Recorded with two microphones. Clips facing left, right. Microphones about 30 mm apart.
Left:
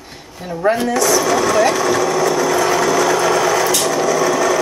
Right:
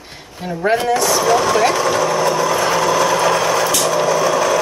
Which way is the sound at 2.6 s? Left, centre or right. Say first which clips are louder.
Even; right.